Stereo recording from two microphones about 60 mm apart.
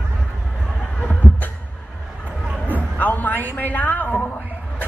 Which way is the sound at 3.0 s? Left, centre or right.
Left.